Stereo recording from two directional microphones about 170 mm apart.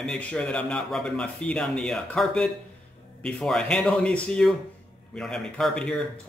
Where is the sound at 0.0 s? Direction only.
5° left (ahead or behind).